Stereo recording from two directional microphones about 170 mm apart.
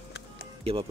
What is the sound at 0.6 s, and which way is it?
Speech, 35° right (ahead or behind).